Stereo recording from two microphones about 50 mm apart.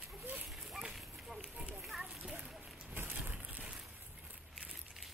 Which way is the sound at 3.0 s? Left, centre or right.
Right.